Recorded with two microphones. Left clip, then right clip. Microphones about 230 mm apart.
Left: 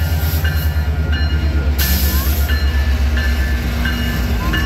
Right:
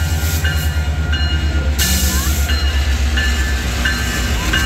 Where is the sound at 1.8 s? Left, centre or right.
Centre.